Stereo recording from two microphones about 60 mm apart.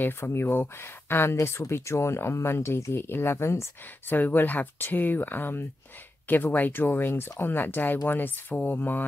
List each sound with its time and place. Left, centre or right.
0.0 s speech: left
4.1 s speech: left